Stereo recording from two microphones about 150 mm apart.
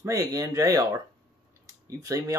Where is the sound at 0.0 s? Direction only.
20° right (ahead or behind).